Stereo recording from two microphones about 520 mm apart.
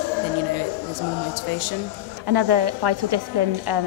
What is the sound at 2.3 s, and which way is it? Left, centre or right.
A woman's voice, right.